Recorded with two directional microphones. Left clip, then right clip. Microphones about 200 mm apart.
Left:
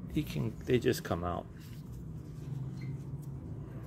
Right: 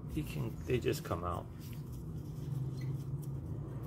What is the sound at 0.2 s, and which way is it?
Speech, 50° left (ahead or behind).